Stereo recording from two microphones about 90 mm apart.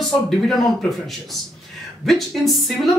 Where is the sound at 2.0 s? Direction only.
Centre (ahead or behind).